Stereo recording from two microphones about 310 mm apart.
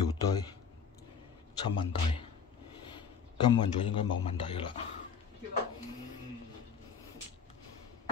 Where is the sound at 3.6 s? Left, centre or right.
Centre.